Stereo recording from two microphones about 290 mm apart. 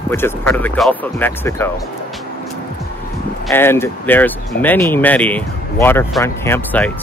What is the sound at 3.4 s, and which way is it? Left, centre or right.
Speech, centre.